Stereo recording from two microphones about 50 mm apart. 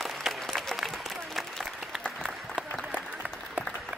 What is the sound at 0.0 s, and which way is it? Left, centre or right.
Applause, centre.